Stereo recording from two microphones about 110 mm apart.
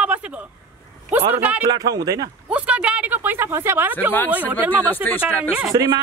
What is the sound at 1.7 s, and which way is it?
Speech, 35° right (ahead or behind).